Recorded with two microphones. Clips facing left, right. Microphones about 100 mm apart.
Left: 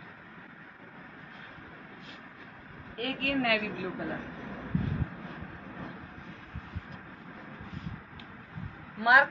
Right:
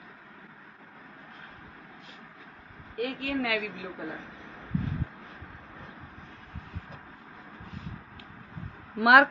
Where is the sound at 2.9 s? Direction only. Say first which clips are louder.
Right 1 dB; 15° right (ahead or behind).